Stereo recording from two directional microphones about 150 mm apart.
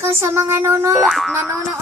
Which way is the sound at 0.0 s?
20° right (ahead or behind).